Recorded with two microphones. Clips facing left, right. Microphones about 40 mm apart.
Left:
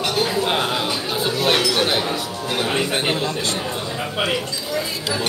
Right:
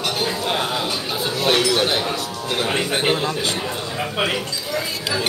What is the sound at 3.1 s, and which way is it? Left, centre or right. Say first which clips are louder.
Speech: right 1 dB; right.